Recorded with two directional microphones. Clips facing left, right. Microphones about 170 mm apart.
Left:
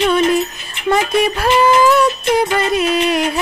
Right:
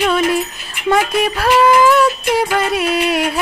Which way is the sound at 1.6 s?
5° right (ahead or behind).